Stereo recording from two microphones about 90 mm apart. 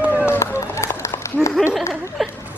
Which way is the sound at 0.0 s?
15° right (ahead or behind).